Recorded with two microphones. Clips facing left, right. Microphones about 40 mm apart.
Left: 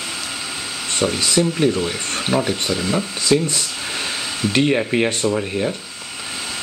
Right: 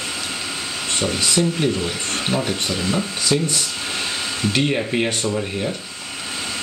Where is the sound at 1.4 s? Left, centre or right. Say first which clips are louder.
Left 2 dB; left.